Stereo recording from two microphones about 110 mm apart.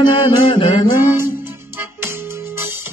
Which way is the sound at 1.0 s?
20° right (ahead or behind).